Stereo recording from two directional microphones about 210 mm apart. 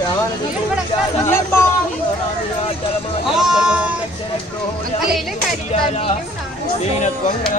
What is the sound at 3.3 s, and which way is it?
Bleat, centre (ahead or behind).